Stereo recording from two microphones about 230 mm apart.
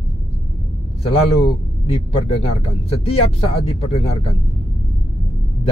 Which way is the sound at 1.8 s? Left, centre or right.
Left.